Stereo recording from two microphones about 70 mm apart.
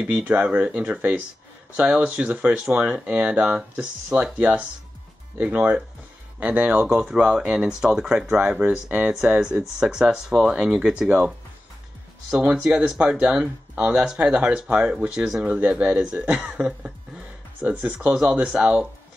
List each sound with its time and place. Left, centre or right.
0.0 s speech: centre
6.9 s speech: centre
15.4 s speech: centre